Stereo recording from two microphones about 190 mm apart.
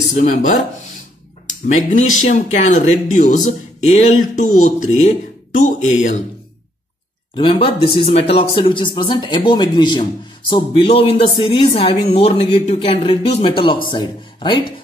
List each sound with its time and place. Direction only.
0.1 s speech: 40° left (ahead or behind)
1.9 s speech: 40° left (ahead or behind)
7.3 s speech: 30° left (ahead or behind)